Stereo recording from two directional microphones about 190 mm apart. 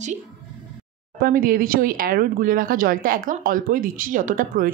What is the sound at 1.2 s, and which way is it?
Speech, 50° right (ahead or behind).